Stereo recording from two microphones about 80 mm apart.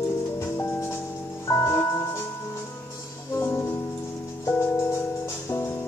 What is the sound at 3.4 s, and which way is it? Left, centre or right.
Music, left.